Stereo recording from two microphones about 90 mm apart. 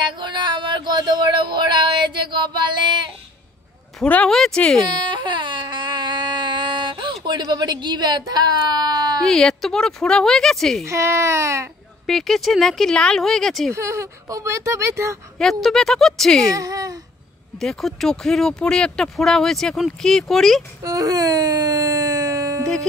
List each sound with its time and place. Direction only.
0.0 s a sound: 60° right (ahead or behind)
4.0 s speech: 15° left (ahead or behind)
5.1 s baby cry: 60° right (ahead or behind)
9.2 s speech: 5° left (ahead or behind)
10.9 s speech: 30° right (ahead or behind)
12.1 s speech: 5° left (ahead or behind)
13.7 s speech: 35° right (ahead or behind)
15.3 s speech: 5° left (ahead or behind)
16.5 s speech: 40° right (ahead or behind)
17.6 s speech: 5° left (ahead or behind)
20.8 s a sound: 40° right (ahead or behind)